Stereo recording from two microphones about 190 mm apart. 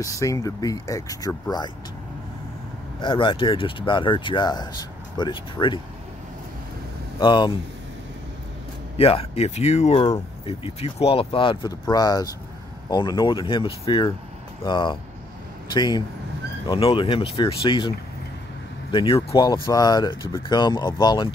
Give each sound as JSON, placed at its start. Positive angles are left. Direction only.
{"t": 0.0, "sound": "speech", "side_deg": 15}
{"t": 3.0, "sound": "speech", "side_deg": 25}
{"t": 7.2, "sound": "speech", "side_deg": 25}
{"t": 8.9, "sound": "speech", "side_deg": 30}
{"t": 10.0, "sound": "speech", "side_deg": 25}